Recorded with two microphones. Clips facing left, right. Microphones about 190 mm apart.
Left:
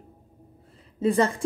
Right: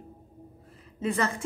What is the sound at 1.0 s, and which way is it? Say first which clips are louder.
Speech: left 6 dB; 30° left (ahead or behind).